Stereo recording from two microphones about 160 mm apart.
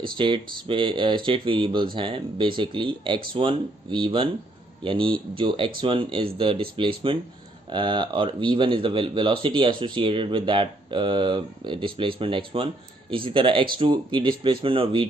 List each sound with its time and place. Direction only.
0.2 s speech: 30° right (ahead or behind)